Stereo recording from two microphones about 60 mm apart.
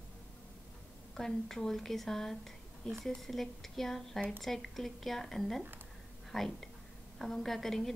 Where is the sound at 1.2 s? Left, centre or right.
Centre.